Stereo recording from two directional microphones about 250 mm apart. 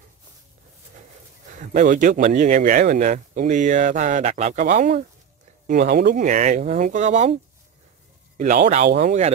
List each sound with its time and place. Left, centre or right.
1.6 s speech: right
8.4 s speech: right